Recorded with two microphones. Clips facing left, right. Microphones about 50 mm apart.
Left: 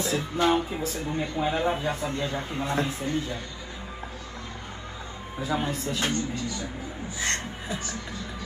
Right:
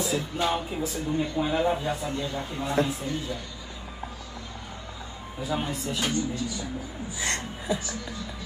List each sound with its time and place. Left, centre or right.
0.0 s speech: left
5.4 s speech: left